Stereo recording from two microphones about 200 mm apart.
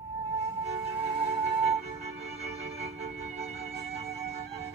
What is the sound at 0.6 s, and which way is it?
Music, 25° right (ahead or behind).